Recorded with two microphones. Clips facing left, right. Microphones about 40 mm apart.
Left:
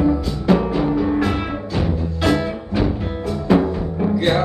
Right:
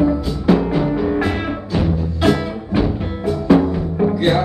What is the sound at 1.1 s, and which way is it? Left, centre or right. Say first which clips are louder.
Music: right 1 dB; centre.